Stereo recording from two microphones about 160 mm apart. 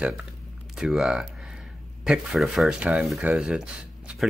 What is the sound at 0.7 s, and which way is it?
Speech, 5° right (ahead or behind).